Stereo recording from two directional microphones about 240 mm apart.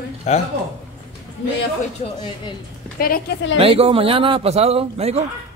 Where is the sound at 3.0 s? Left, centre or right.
Left.